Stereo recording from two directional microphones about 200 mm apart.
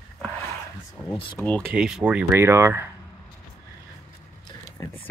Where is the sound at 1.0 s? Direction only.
20° left (ahead or behind).